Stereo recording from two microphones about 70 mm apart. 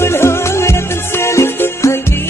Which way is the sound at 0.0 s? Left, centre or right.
Left.